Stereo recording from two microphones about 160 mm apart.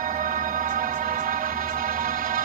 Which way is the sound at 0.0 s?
55° right (ahead or behind).